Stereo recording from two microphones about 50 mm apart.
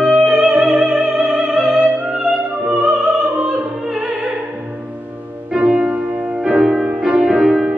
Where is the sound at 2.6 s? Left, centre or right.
Right.